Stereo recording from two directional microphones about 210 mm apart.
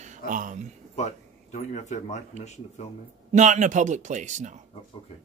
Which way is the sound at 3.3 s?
35° right (ahead or behind).